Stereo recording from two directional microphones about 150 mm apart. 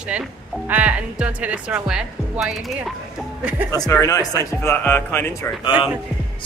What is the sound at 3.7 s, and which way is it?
Speech, 25° left (ahead or behind).